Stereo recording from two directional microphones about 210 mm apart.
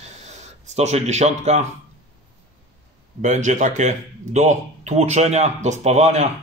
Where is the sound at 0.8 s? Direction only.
30° right (ahead or behind).